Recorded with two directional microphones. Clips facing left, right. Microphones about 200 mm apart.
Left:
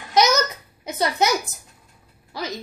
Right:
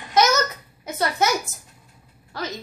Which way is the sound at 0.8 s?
15° left (ahead or behind).